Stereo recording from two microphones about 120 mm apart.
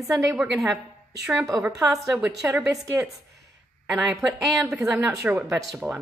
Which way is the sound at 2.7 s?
30° right (ahead or behind).